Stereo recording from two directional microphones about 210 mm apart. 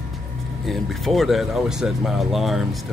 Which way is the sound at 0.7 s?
Centre (ahead or behind).